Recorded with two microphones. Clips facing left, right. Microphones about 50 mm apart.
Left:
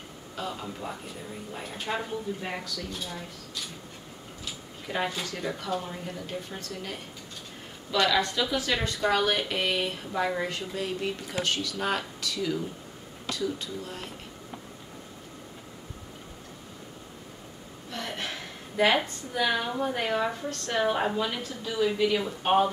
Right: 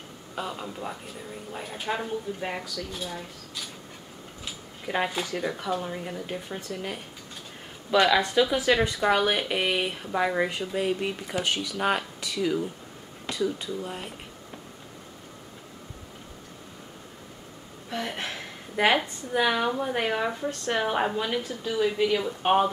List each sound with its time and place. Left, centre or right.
0.4 s speech: centre
4.8 s speech: centre
7.9 s speech: centre
17.9 s speech: centre